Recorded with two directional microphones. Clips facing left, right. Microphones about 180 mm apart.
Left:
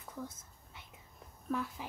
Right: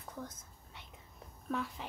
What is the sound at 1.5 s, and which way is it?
Speech, 5° left (ahead or behind).